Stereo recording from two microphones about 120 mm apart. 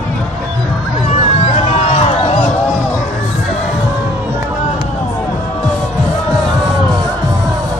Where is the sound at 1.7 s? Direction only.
65° left (ahead or behind).